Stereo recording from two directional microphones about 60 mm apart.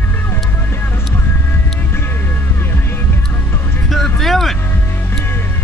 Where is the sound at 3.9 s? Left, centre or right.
Centre.